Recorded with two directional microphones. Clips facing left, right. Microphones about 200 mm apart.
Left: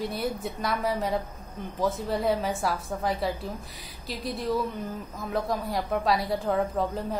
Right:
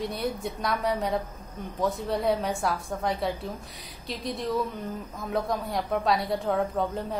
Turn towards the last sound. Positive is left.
turn(degrees=0)  # may be behind; listen again after turning